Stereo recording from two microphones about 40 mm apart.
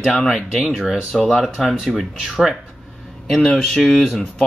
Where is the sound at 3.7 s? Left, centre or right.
Centre.